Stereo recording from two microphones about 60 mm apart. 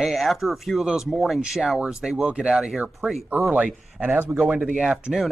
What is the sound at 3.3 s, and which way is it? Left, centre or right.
Speech, right.